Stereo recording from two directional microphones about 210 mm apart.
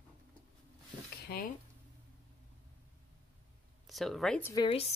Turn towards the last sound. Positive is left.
turn(degrees=30)  # may be behind; listen again after turning